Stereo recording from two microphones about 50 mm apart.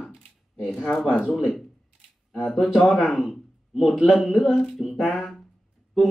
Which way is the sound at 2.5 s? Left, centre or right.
Centre.